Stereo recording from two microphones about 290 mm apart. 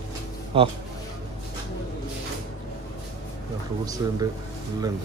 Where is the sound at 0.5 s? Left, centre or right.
Centre.